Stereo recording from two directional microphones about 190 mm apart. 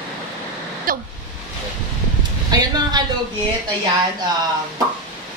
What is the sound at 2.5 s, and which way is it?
Speech, 20° right (ahead or behind).